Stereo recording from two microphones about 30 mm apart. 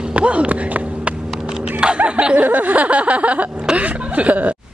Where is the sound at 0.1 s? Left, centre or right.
Right.